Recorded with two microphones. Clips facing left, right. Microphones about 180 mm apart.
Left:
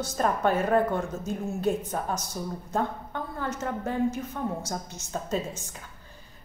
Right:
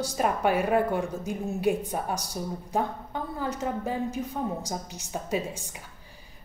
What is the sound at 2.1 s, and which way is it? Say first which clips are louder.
Speech: even; 35° right (ahead or behind).